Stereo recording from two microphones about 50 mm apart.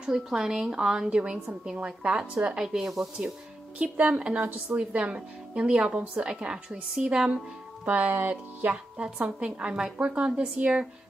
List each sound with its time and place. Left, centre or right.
0.0 s speech: centre
1.1 s speech: right
3.7 s speech: right
8.1 s speech: right
9.4 s speech: centre